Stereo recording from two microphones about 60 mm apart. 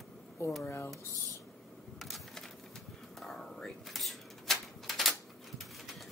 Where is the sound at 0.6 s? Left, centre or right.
Left.